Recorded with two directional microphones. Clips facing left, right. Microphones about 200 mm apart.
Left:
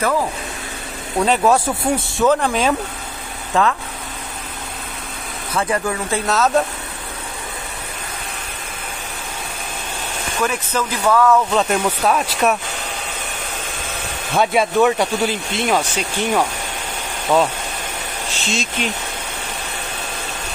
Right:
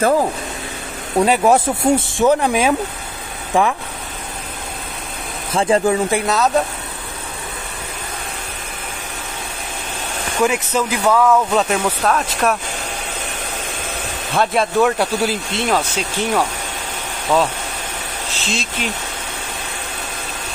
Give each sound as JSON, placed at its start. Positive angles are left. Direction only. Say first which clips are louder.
{"t": 1.2, "sound": "speech", "louder": "right 1 dB", "side_deg": -15}
{"t": 5.5, "sound": "speech", "louder": "right 5 dB", "side_deg": -25}
{"t": 6.2, "sound": "speech", "louder": "right 1 dB", "side_deg": 0}
{"t": 10.4, "sound": "speech", "louder": "right 4 dB", "side_deg": -15}
{"t": 11.6, "sound": "speech", "louder": "even", "side_deg": 0}
{"t": 14.3, "sound": "speech", "louder": "left 1 dB", "side_deg": 0}